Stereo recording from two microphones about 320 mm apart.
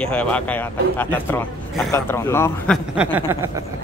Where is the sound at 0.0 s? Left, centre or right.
Centre.